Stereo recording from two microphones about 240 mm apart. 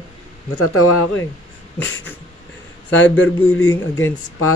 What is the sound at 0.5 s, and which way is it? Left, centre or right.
Speech, left.